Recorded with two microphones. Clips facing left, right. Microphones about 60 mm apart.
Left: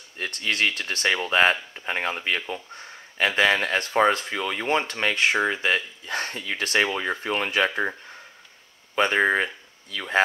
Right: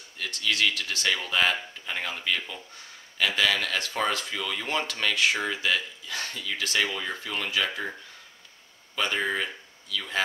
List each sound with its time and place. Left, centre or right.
0.2 s speech: left
8.9 s speech: left